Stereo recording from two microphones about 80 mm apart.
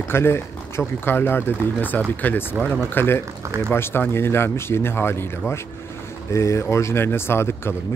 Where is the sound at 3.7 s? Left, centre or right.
Left.